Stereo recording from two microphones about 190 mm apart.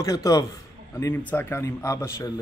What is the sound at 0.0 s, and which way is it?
Speech, 15° left (ahead or behind).